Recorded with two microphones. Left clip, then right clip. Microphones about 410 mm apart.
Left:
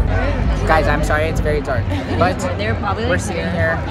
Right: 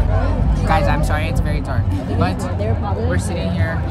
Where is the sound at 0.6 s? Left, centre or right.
Centre.